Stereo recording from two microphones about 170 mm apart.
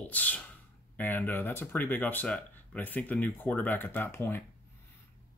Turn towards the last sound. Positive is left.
turn(degrees=15)  # may be behind; listen again after turning